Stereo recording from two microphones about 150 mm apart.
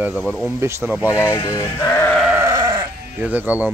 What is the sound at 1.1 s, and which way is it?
Speech, 20° left (ahead or behind).